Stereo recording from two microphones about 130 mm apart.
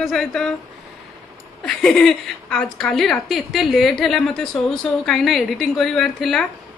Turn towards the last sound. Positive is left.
turn(degrees=5)  # may be behind; listen again after turning